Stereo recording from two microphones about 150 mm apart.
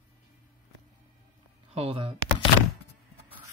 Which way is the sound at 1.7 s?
40° right (ahead or behind).